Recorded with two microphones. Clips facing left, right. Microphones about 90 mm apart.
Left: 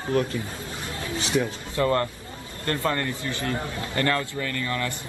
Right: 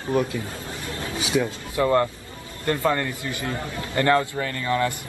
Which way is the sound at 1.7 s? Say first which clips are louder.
Right 3 dB; 15° right (ahead or behind).